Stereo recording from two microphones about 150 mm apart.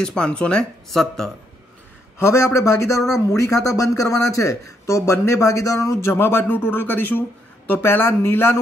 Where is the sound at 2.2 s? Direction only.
20° left (ahead or behind).